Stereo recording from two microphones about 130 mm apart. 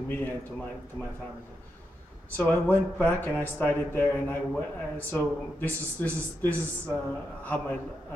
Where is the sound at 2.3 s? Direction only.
10° left (ahead or behind).